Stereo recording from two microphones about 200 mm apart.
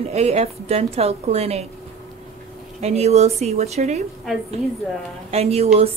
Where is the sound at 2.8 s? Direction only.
30° right (ahead or behind).